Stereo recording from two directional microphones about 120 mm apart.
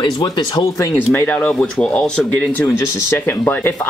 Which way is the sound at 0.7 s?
15° left (ahead or behind).